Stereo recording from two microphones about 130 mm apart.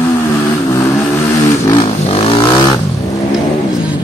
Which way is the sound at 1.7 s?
45° left (ahead or behind).